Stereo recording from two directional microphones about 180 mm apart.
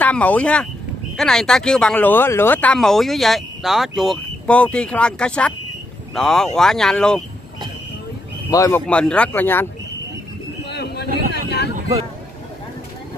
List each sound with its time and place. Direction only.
0.0 s speech: 10° left (ahead or behind)
8.5 s speech: 20° left (ahead or behind)
8.8 s speech: 5° left (ahead or behind)
10.6 s a sound: 65° left (ahead or behind)